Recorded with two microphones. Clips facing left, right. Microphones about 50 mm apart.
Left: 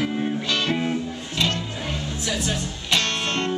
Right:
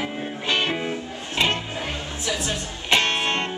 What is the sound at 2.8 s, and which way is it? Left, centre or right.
Music, right.